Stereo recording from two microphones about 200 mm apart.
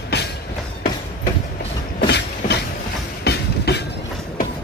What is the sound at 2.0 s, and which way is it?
Train, 55° left (ahead or behind).